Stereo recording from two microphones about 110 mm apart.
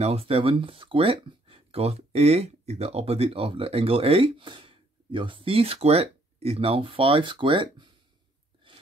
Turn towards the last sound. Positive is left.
turn(degrees=-45)  # may be behind; listen again after turning